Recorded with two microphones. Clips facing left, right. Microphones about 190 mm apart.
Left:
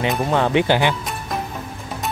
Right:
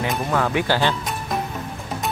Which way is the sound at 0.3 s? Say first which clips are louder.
Left 4 dB; 25° left (ahead or behind).